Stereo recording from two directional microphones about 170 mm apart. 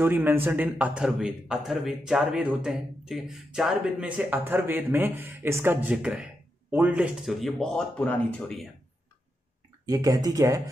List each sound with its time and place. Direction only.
0.0 s a man's voice: 10° right (ahead or behind); by 8.6 s 5° left (ahead or behind)
9.8 s speech: 20° right (ahead or behind)